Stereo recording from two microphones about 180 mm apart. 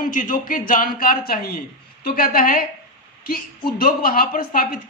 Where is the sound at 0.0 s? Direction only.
50° left (ahead or behind).